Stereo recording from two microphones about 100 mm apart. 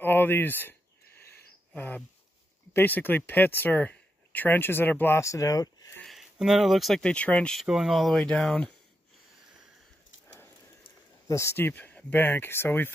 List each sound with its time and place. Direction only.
0.0 s a sound: 20° left (ahead or behind)
2.7 s speech: 20° left (ahead or behind); by 5.9 s 40° left (ahead or behind)
6.0 s speech: 5° right (ahead or behind); by 7.5 s 15° left (ahead or behind)
7.5 s speech: 5° right (ahead or behind)
10.2 s horse: 25° left (ahead or behind)
11.2 s speech: 30° left (ahead or behind)